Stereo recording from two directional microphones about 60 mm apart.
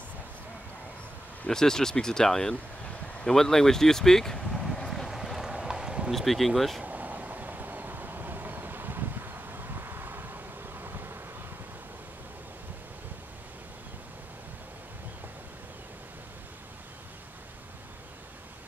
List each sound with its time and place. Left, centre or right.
1.5 s speech: centre
3.3 s vehicle: centre
6.1 s speech: centre
6.8 s vehicle: right